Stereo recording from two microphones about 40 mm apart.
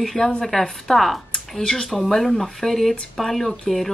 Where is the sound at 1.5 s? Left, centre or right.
Centre.